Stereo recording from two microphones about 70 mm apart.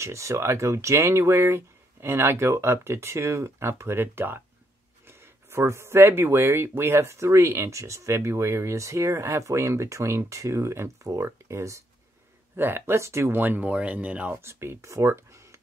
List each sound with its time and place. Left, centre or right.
0.0 s speech: right
12.5 s speech: right
13.4 s speech: right
14.3 s speech: right